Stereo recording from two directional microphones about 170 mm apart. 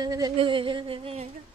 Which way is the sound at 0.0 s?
20° right (ahead or behind).